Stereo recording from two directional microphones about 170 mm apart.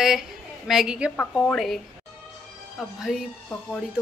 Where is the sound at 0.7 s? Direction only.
5° right (ahead or behind).